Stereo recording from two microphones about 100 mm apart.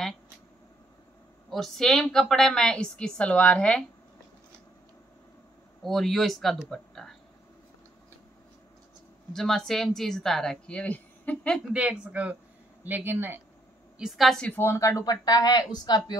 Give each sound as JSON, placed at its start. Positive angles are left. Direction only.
{"t": 1.5, "sound": "a woman's voice", "side_deg": 5}
{"t": 5.9, "sound": "speech", "side_deg": 0}
{"t": 9.3, "sound": "speech", "side_deg": 5}
{"t": 11.7, "sound": "a woman's voice", "side_deg": -10}
{"t": 13.9, "sound": "speech", "side_deg": -5}
{"t": 14.4, "sound": "speech", "side_deg": 20}